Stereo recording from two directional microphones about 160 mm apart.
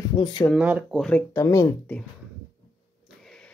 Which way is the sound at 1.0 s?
5° left (ahead or behind).